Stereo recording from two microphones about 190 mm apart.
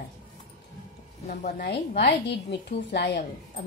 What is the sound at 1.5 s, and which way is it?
A woman's voice, 60° left (ahead or behind).